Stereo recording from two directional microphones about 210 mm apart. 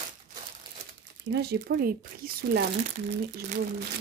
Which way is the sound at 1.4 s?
45° right (ahead or behind).